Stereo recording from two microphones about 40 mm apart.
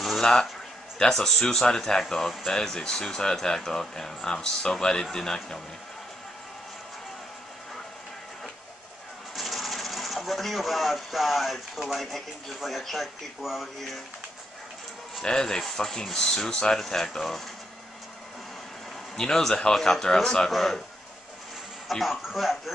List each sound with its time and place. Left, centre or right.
0.0 s music: centre
0.9 s speech: centre
9.3 s speech: centre
15.2 s speech: centre
19.1 s speech: centre
22.0 s speech: centre